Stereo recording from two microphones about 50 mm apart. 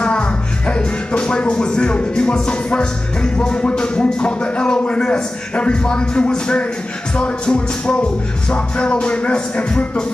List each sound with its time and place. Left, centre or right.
0.0 s music: left